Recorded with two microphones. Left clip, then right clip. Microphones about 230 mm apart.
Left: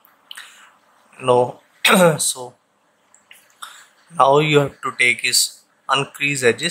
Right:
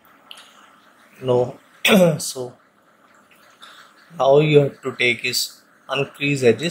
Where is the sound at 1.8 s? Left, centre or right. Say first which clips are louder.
Left 2 dB; centre.